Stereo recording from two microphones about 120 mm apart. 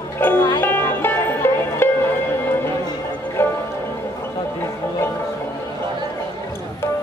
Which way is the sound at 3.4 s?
15° left (ahead or behind).